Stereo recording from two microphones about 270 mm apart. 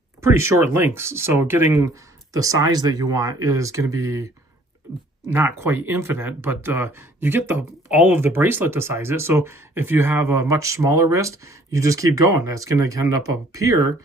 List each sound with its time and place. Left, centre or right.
0.2 s speech: centre
5.3 s speech: centre